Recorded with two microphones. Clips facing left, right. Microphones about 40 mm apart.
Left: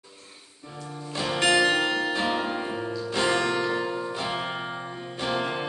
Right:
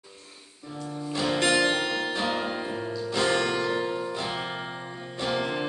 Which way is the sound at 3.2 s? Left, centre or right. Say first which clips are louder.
Left 1 dB; left.